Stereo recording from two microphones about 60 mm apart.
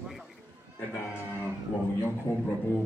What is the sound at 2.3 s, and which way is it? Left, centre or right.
Speech, left.